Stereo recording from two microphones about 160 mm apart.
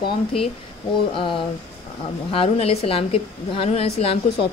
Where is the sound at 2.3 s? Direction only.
35° left (ahead or behind).